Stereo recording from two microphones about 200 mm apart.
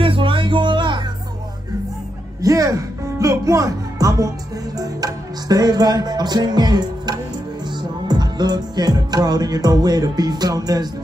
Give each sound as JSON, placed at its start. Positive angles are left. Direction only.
{"t": 0.0, "sound": "music", "side_deg": -25}
{"t": 2.4, "sound": "music", "side_deg": -15}